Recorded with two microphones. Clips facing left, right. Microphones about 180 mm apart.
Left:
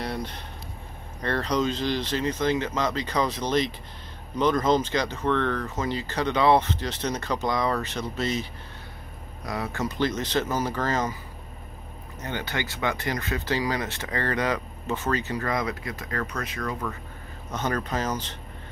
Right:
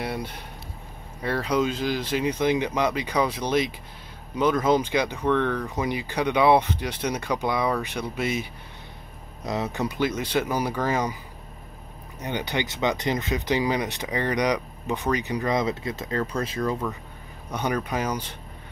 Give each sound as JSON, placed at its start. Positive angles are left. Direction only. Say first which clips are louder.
{"t": 0.0, "sound": "a sound", "louder": "right 1 dB", "side_deg": -10}
{"t": 1.2, "sound": "speech", "louder": "right 1 dB", "side_deg": -10}
{"t": 9.5, "sound": "speech", "louder": "right 3 dB", "side_deg": -20}
{"t": 12.2, "sound": "speech", "louder": "right 3 dB", "side_deg": -15}
{"t": 17.5, "sound": "speech", "louder": "right 1 dB", "side_deg": -10}